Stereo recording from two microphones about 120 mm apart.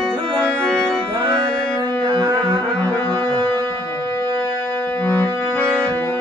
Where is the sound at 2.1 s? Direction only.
35° right (ahead or behind).